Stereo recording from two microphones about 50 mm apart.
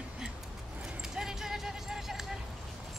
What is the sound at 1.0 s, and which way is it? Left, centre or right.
Clip-clop, centre.